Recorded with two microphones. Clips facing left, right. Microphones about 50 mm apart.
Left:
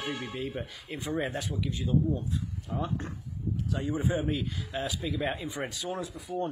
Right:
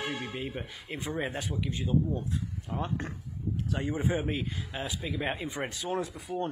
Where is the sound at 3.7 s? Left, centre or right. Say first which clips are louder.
Left 1 dB; right.